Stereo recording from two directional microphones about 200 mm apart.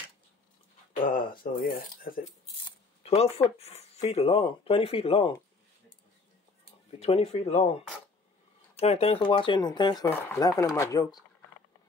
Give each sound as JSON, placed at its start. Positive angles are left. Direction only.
{"t": 1.4, "sound": "speech", "side_deg": 40}
{"t": 2.6, "sound": "speech", "side_deg": 30}
{"t": 6.9, "sound": "speech", "side_deg": 30}